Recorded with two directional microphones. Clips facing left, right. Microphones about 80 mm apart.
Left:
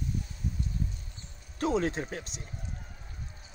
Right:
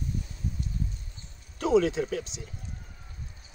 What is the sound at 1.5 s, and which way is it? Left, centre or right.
Speech, left.